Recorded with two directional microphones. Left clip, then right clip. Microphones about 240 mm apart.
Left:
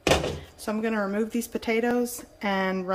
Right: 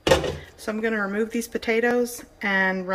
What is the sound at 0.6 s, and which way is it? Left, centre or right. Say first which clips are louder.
A woman's voice: right 2 dB; centre.